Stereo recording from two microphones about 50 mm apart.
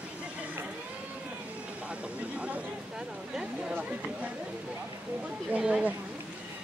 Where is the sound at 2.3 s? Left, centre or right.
Right.